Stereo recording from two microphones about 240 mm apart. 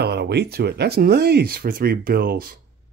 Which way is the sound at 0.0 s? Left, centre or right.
Right.